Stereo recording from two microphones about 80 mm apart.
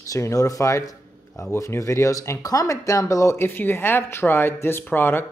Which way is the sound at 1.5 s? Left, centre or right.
Left.